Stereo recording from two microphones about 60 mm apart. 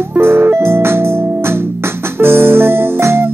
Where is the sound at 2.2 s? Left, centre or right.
Right.